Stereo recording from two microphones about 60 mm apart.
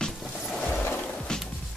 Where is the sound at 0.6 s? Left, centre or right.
Left.